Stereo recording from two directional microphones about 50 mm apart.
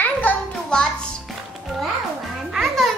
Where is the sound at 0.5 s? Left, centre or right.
Centre.